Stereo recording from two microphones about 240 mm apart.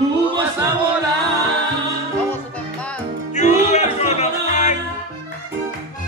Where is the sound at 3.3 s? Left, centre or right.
Left.